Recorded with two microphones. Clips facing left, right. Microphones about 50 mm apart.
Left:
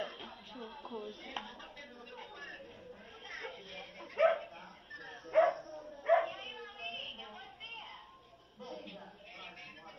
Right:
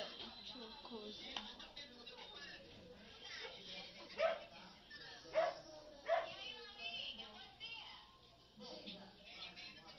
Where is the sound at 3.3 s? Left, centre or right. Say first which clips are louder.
Left 8 dB; left.